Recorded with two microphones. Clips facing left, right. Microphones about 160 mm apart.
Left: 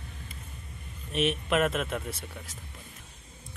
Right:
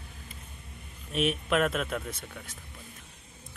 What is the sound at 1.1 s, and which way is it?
Speech, centre (ahead or behind).